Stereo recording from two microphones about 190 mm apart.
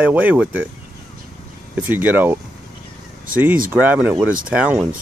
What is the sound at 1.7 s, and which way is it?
Speech, 10° right (ahead or behind).